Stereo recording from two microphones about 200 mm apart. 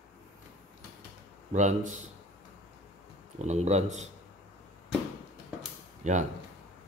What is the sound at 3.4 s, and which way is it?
Speech, 35° right (ahead or behind).